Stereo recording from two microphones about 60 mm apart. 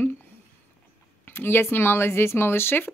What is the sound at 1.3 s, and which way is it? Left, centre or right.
Speech, left.